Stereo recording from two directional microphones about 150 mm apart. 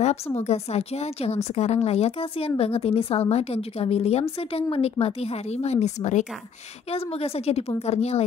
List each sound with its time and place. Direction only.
0.0 s a woman's voice: 45° left (ahead or behind)